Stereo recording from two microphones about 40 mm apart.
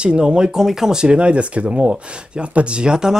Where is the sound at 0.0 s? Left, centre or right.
Right.